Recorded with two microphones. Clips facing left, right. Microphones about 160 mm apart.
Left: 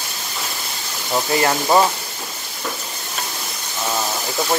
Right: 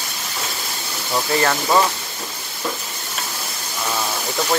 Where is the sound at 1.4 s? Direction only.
25° left (ahead or behind).